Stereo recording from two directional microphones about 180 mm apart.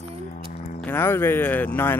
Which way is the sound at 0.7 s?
10° left (ahead or behind).